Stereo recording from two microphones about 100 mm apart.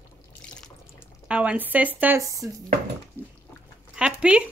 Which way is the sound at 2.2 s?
35° right (ahead or behind).